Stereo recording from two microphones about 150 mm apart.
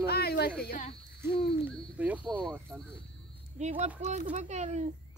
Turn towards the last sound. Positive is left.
turn(degrees=-50)  # may be behind; listen again after turning